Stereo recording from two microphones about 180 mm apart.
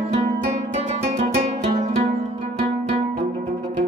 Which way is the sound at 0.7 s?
40° right (ahead or behind).